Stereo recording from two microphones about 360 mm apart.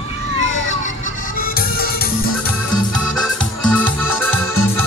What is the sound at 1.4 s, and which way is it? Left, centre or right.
Music, left.